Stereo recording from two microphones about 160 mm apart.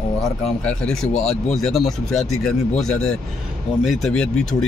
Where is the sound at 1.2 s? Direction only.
40° left (ahead or behind).